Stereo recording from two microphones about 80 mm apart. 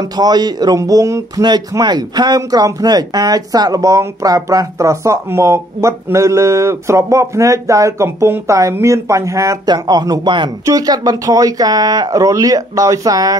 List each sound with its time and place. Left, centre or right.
0.2 s speech: right
0.7 s speech: right
1.4 s speech: right
9.7 s speech: right
10.6 s speech: right